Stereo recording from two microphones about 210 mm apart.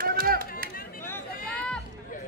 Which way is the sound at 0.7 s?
45° left (ahead or behind).